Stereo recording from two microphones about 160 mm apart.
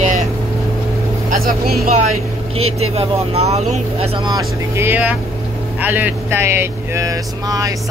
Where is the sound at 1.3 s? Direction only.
65° right (ahead or behind).